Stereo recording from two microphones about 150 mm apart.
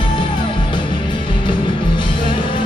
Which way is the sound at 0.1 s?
30° left (ahead or behind).